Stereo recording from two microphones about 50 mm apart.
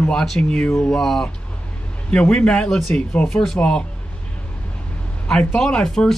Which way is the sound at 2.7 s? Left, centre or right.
Centre.